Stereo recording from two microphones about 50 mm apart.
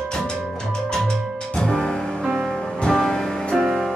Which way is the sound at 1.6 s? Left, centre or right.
Centre.